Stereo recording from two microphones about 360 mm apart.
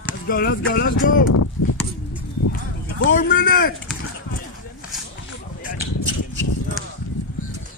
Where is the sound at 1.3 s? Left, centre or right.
Left.